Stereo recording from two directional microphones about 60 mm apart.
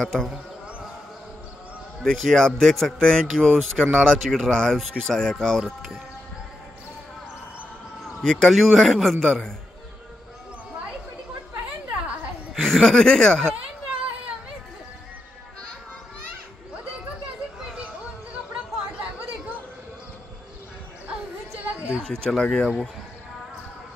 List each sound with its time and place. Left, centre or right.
0.0 s speech: centre
2.0 s speech: centre
8.2 s speech: centre
12.6 s speech: centre
21.5 s a sound: right
22.0 s a sound: centre
22.4 s speech: centre